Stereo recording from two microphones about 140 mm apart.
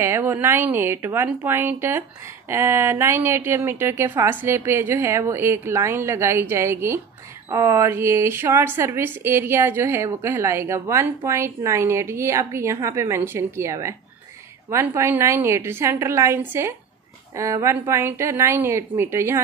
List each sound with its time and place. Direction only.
0.0 s a woman's voice: 15° right (ahead or behind)